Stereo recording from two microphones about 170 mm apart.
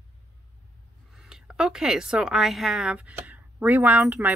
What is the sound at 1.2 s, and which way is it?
A woman's voice, 5° right (ahead or behind).